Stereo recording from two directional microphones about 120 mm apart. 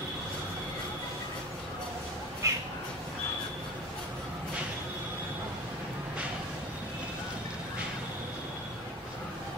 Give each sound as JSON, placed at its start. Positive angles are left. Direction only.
{"t": 2.4, "sound": "cat", "side_deg": -25}